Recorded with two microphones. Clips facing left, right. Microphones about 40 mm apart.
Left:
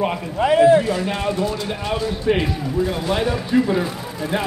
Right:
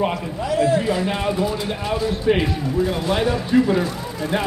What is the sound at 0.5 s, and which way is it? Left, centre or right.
Speech, left.